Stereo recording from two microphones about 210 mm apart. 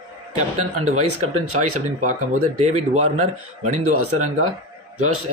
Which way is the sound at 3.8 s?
90° right.